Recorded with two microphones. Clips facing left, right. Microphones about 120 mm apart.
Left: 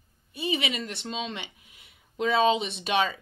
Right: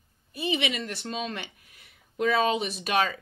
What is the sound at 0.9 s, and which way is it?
A woman's voice, 25° left (ahead or behind).